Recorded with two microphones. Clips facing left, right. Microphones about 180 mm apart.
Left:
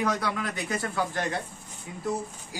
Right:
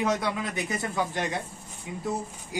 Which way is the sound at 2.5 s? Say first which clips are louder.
Right 5 dB; 20° right (ahead or behind).